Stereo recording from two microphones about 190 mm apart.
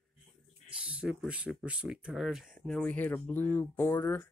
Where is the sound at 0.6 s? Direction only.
5° right (ahead or behind).